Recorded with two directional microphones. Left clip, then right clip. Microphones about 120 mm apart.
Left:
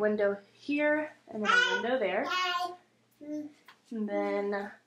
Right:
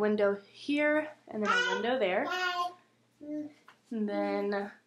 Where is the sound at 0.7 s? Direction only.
40° right (ahead or behind).